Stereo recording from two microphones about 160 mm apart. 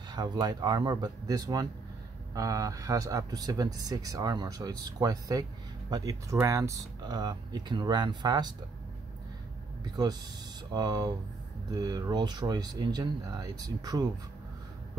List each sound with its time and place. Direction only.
0.1 s speech: 25° right (ahead or behind)
10.7 s speech: 25° right (ahead or behind)